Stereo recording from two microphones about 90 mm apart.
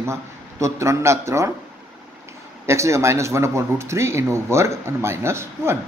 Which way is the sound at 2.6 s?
35° right (ahead or behind).